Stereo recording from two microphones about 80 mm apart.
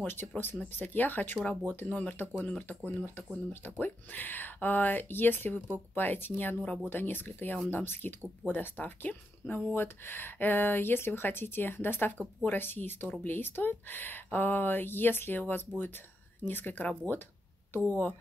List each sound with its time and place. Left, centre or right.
0.0 s speech: left